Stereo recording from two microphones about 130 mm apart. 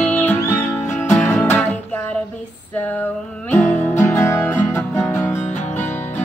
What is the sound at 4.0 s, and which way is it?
Music, 25° left (ahead or behind).